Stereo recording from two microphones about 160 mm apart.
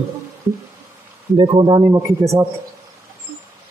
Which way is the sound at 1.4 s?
30° right (ahead or behind).